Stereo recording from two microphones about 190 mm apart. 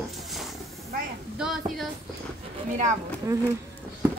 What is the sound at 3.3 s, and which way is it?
Speech, 15° right (ahead or behind).